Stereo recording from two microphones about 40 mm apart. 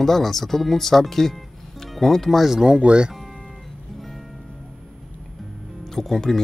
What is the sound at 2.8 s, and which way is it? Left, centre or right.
Speech, right.